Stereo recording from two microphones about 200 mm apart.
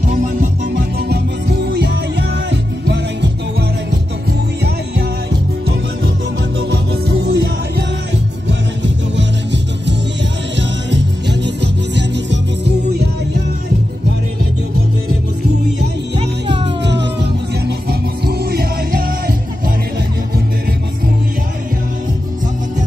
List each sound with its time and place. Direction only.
0.1 s music: 40° right (ahead or behind); by 3.3 s 60° right (ahead or behind)
6.7 s music: 55° right (ahead or behind)
16.8 s music: 60° right (ahead or behind)